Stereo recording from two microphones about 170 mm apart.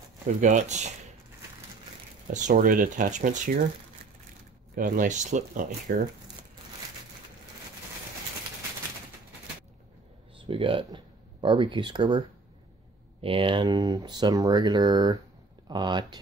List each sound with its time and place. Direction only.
0.4 s speech: 45° right (ahead or behind)
2.3 s speech: 50° right (ahead or behind)
4.7 s speech: 55° right (ahead or behind)
10.4 s speech: 30° right (ahead or behind)